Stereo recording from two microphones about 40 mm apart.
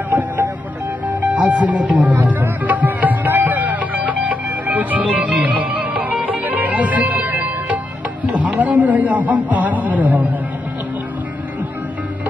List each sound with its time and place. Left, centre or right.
1.0 s music: right
8.3 s a man's voice: right